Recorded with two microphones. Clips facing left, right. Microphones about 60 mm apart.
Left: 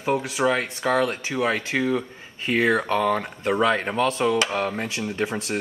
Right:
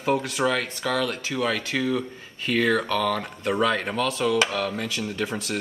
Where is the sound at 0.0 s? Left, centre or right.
Centre.